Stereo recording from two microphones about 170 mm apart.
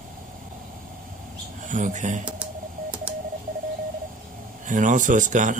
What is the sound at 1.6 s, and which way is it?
Speech, 50° right (ahead or behind).